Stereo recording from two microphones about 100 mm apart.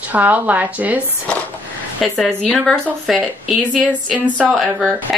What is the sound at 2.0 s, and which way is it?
A woman's voice, centre (ahead or behind).